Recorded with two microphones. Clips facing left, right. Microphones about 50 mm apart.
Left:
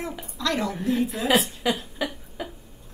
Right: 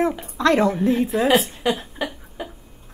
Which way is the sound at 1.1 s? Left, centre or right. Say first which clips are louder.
Right 6 dB; centre.